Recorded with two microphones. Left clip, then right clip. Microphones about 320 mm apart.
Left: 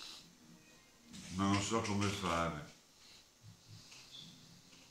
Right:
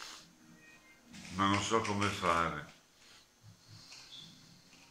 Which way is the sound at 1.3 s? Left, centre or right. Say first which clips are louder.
Right 5 dB; centre.